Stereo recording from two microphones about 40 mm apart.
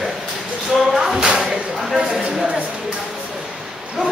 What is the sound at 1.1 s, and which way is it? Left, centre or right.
Speech, centre.